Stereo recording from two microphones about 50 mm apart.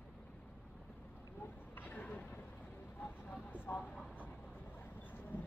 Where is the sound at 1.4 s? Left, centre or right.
Left.